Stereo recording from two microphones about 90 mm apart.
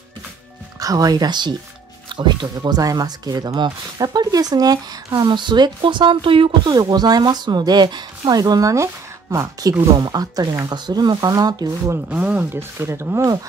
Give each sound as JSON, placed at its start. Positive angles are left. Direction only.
{"t": 0.7, "sound": "speech", "side_deg": -45}
{"t": 6.7, "sound": "speech", "side_deg": -50}
{"t": 12.1, "sound": "speech", "side_deg": -15}